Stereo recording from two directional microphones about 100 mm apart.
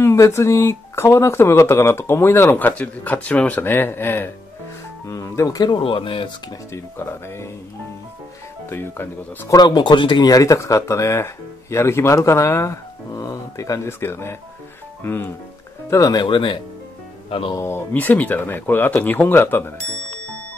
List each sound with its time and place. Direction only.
0.0 s speech: 25° left (ahead or behind)
5.0 s speech: 35° left (ahead or behind)
5.8 s speech: 60° left (ahead or behind)
6.7 s speech: 25° left (ahead or behind)
8.6 s speech: 20° left (ahead or behind)
9.5 s speech: 45° left (ahead or behind); by 15.3 s 20° left (ahead or behind)
15.9 s speech: 40° left (ahead or behind)
16.3 s speech: 55° left (ahead or behind)
17.6 s speech: 25° left (ahead or behind)